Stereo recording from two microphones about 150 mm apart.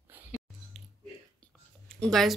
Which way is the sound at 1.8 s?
5° left (ahead or behind).